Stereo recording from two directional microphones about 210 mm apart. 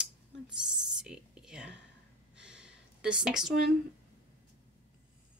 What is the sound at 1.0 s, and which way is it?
Speech, 5° right (ahead or behind).